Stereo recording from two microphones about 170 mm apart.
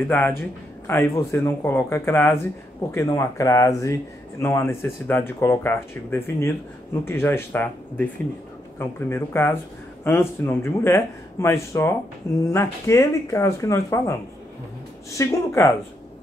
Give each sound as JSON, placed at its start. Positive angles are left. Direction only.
{"t": 0.8, "sound": "speech", "side_deg": 15}